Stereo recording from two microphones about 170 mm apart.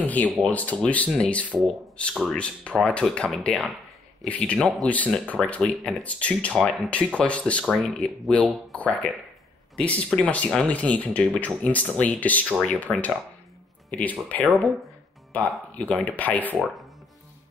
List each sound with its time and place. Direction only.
0.0 s speech: 10° left (ahead or behind)